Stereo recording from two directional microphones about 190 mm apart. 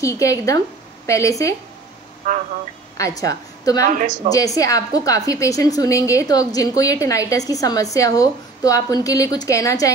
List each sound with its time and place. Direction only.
0.0 s a woman's voice: 15° left (ahead or behind)
2.3 s a woman's voice: 45° right (ahead or behind)
3.0 s a woman's voice: 20° left (ahead or behind)
4.2 s a woman's voice: 45° right (ahead or behind)
4.6 s a woman's voice: 15° left (ahead or behind)